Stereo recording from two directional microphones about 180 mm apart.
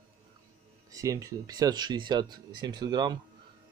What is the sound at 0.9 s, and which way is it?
Speech, 20° right (ahead or behind).